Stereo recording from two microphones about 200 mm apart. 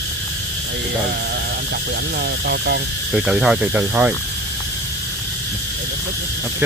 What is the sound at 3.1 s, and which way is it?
Speech, 5° right (ahead or behind).